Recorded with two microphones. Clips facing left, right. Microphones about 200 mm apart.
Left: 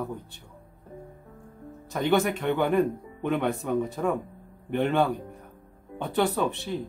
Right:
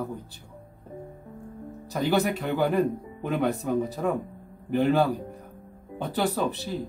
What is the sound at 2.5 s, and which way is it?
Speech, 35° right (ahead or behind).